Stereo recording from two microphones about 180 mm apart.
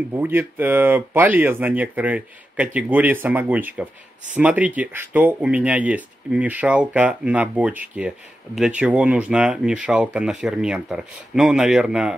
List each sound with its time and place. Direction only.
0.2 s speech: 10° right (ahead or behind)